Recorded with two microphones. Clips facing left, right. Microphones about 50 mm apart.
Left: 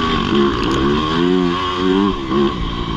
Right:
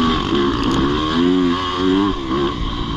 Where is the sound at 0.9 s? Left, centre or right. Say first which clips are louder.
Left 1 dB; left.